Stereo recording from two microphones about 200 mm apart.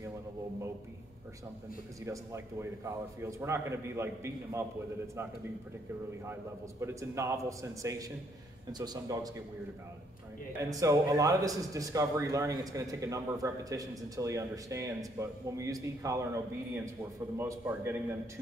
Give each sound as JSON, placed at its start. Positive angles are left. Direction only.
{"t": 2.0, "sound": "speech", "side_deg": -15}
{"t": 6.8, "sound": "a man's voice", "side_deg": -15}
{"t": 10.6, "sound": "speech", "side_deg": -15}
{"t": 17.4, "sound": "speech", "side_deg": -10}